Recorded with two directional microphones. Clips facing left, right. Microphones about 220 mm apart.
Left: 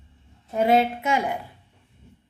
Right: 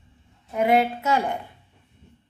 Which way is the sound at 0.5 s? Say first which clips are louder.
Left 1 dB; 25° left (ahead or behind).